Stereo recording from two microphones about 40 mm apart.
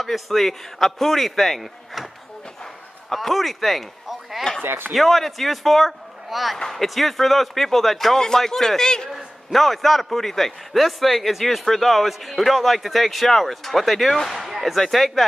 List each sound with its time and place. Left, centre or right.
0.0 s a man's voice: centre
3.1 s speech: centre
4.6 s speech: right
4.9 s a man's voice: centre
9.5 s a man's voice: centre